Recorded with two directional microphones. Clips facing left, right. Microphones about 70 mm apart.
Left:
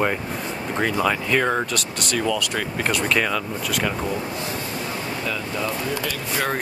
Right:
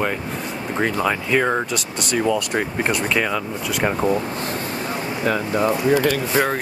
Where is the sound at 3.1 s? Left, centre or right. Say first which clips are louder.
Right 1 dB; centre.